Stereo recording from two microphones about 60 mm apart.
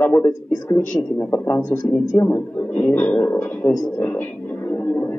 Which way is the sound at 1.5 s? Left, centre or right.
Left.